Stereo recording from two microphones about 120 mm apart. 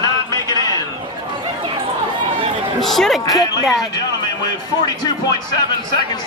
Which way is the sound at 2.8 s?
Centre (ahead or behind).